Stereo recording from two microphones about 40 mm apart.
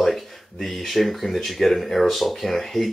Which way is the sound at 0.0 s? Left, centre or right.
Centre.